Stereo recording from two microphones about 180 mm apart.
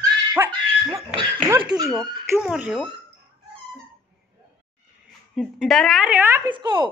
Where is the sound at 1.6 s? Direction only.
20° right (ahead or behind).